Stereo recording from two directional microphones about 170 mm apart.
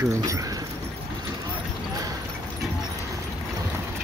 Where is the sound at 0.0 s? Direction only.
20° right (ahead or behind).